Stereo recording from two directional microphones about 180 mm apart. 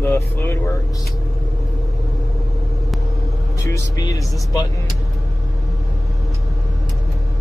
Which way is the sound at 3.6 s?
20° left (ahead or behind).